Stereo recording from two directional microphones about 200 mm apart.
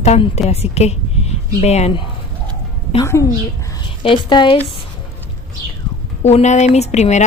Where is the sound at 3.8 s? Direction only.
25° left (ahead or behind).